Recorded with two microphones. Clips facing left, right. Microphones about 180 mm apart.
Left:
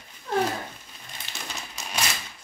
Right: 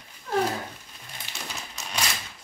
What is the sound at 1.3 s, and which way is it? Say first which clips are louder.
Crumpling: even; 10° right (ahead or behind).